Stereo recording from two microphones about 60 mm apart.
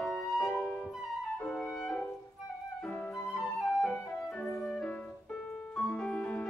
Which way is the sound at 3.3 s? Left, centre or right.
Centre.